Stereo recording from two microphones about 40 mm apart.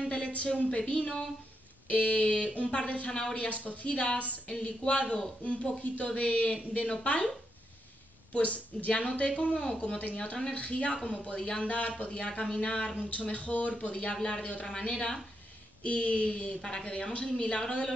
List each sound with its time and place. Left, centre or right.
0.7 s speech: left
3.4 s a woman's voice: left
8.3 s a woman's voice: left
12.4 s speech: centre
13.1 s a woman's voice: left